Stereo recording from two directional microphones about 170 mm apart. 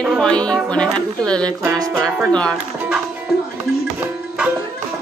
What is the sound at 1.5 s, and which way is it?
Music, 20° right (ahead or behind).